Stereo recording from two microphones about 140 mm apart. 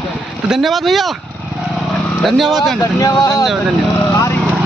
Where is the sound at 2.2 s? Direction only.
Centre (ahead or behind).